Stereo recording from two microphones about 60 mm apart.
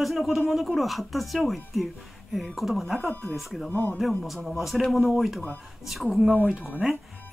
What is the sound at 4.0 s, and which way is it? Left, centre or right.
Speech, centre.